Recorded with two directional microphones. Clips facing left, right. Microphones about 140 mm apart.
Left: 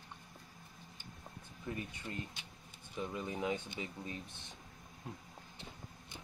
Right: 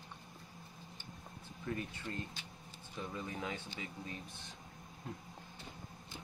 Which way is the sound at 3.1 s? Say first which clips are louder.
Left 5 dB; 20° left (ahead or behind).